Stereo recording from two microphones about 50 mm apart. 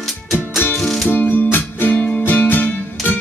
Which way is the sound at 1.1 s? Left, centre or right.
Left.